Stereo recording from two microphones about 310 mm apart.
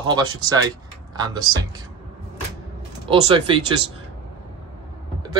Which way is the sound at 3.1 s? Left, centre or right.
Centre.